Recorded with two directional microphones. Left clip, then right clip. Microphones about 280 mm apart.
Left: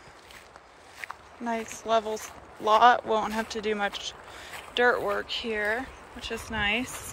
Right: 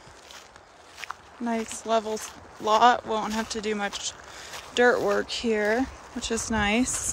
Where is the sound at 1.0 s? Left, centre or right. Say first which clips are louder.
Right 2 dB; centre.